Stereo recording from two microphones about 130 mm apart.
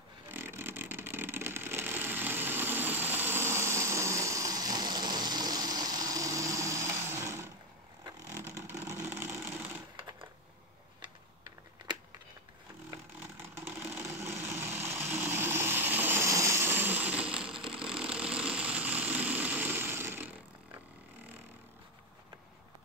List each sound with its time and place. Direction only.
0.3 s vehicle: 15° right (ahead or behind)
11.0 s typing: 35° right (ahead or behind)
14.2 s vehicle: 20° right (ahead or behind)
17.7 s a sound: 5° right (ahead or behind)